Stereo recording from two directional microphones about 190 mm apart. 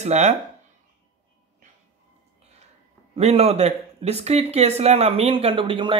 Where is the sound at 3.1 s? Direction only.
35° right (ahead or behind).